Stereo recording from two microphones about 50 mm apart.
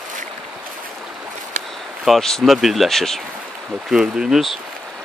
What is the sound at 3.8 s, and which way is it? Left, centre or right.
Speech, centre.